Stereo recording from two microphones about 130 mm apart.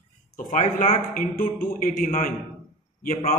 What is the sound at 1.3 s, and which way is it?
Speech, 90° left.